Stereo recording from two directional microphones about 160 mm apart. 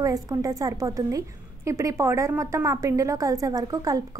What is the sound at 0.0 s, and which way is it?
A woman's voice, 20° right (ahead or behind).